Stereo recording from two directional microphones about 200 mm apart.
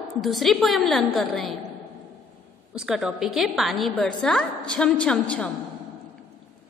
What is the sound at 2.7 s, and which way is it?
A woman's voice, centre (ahead or behind).